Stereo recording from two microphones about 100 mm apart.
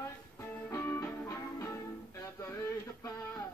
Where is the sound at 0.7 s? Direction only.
25° left (ahead or behind).